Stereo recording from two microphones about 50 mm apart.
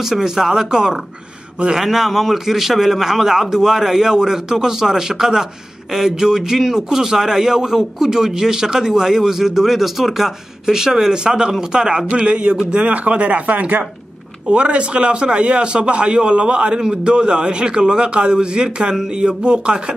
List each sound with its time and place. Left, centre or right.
0.0 s a man's voice: centre
1.9 s a man's voice: centre
12.1 s a man's voice: right
14.5 s a man's voice: right